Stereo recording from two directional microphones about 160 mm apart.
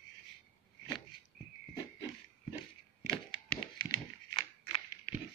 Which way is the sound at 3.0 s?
30° left (ahead or behind).